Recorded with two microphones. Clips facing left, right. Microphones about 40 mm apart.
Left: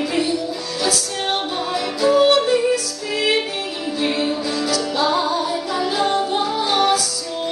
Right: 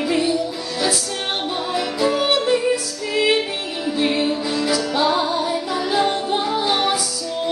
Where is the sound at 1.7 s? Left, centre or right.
Centre.